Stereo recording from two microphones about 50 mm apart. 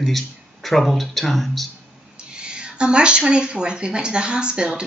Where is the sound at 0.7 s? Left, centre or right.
Centre.